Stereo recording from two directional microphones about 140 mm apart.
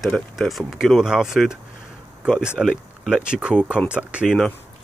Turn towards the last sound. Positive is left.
turn(degrees=-5)  # may be behind; listen again after turning